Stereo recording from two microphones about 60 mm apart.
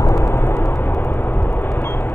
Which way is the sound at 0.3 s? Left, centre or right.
Left.